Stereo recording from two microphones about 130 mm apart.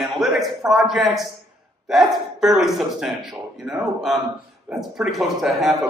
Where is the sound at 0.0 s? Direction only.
Centre (ahead or behind).